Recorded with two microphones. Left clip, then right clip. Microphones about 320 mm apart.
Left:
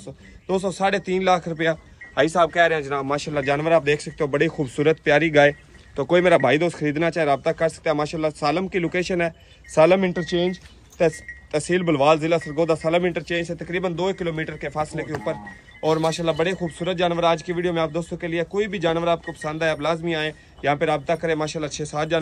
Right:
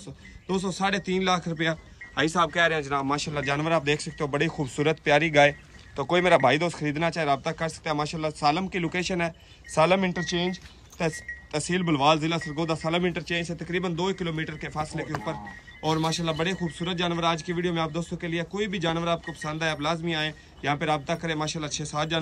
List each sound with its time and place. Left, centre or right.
0.0 s a man's voice: centre